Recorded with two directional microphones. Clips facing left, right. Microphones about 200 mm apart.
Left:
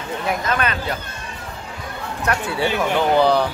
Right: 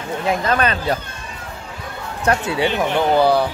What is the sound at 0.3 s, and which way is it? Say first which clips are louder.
Speech: right 4 dB; 30° right (ahead or behind).